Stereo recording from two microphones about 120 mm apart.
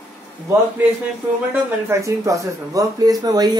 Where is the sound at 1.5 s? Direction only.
25° right (ahead or behind).